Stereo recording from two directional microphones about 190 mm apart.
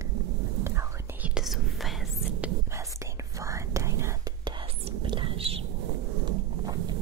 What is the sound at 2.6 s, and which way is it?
Whispering, 15° right (ahead or behind).